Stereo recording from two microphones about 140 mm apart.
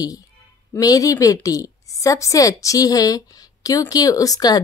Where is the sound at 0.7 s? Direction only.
25° left (ahead or behind).